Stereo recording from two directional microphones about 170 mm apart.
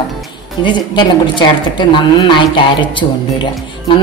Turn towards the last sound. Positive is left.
turn(degrees=30)  # may be behind; listen again after turning